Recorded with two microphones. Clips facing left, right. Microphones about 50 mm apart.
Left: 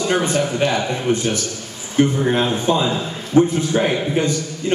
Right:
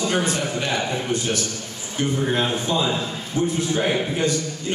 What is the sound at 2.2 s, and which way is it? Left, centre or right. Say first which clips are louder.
A man's voice: left 4 dB; left.